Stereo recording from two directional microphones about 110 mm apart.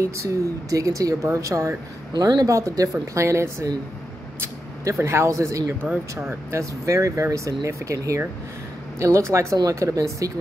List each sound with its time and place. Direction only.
0.0 s speech: 30° right (ahead or behind)